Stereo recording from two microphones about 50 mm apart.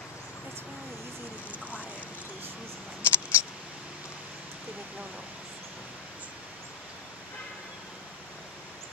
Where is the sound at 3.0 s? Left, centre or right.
Left.